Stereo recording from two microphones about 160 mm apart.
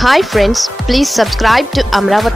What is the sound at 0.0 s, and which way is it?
Speech, centre (ahead or behind).